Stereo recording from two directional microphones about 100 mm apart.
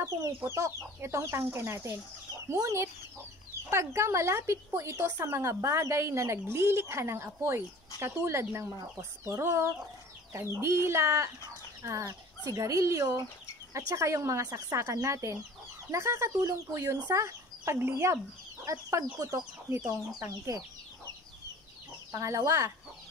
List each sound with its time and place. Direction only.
0.0 s speech: 30° right (ahead or behind)
22.1 s speech: 30° right (ahead or behind)